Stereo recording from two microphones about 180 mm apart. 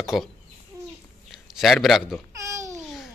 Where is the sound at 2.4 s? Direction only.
15° right (ahead or behind).